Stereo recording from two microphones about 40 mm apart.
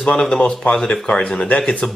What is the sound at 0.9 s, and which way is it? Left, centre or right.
Speech, left.